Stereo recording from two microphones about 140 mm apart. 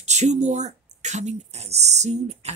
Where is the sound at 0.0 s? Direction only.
55° right (ahead or behind).